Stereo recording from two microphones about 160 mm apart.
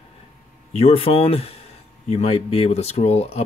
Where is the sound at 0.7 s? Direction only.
35° left (ahead or behind).